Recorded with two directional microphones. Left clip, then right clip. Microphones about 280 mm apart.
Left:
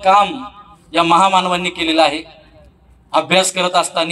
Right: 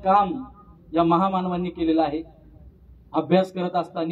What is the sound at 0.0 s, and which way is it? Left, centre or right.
A man's voice, centre.